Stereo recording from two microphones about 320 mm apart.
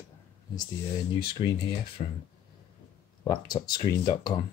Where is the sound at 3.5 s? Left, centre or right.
Centre.